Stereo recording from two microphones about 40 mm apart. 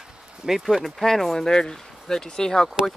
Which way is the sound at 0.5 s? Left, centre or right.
Centre.